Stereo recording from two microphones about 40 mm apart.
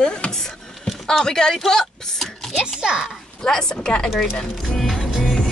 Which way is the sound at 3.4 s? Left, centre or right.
Centre.